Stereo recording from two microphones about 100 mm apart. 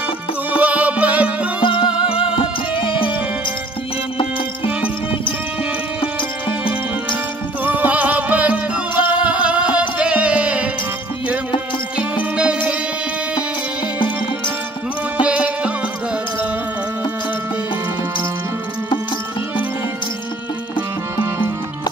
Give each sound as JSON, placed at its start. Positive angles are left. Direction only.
{"t": 0.5, "sound": "music", "side_deg": -15}
{"t": 1.6, "sound": "music", "side_deg": 55}
{"t": 7.6, "sound": "music", "side_deg": -15}
{"t": 12.0, "sound": "music", "side_deg": -10}
{"t": 15.2, "sound": "music", "side_deg": -10}